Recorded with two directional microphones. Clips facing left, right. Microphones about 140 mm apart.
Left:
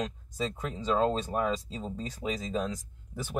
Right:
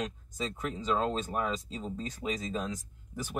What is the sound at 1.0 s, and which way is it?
Speech, 30° left (ahead or behind).